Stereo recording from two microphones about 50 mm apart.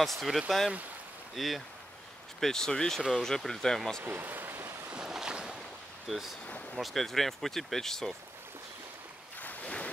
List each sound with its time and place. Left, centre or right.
0.2 s speech: centre
2.4 s speech: centre
4.0 s speech: right
4.9 s boat: centre
6.0 s speech: centre
6.4 s a sound: left
6.8 s speech: centre
9.4 s waves: left